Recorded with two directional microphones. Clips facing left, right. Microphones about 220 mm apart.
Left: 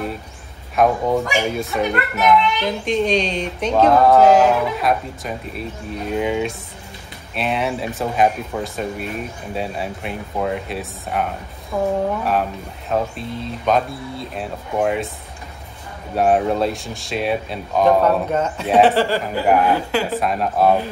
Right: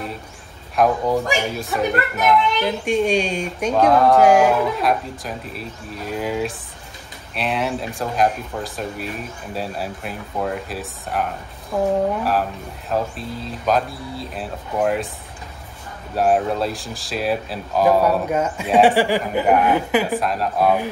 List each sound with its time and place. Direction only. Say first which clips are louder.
0.8 s speech: left 1 dB; centre (ahead or behind)
4.2 s speech: even; 10° right (ahead or behind)
4.7 s speech: even; centre (ahead or behind)
12.9 s speech: left 2 dB; centre (ahead or behind)
16.2 s speech: left 2 dB; centre (ahead or behind); by 20.2 s 15° right (ahead or behind)
20.2 s speech: left 2 dB; centre (ahead or behind)